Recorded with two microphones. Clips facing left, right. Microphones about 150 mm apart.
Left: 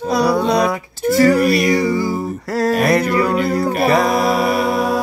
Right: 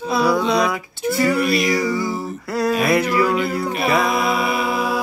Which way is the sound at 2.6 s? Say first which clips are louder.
Left 2 dB; 45° left (ahead or behind).